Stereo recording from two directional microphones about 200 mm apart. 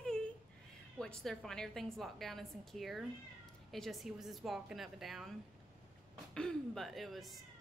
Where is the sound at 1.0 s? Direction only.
Centre (ahead or behind).